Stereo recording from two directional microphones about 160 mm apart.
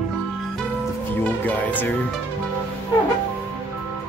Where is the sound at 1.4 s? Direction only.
10° left (ahead or behind).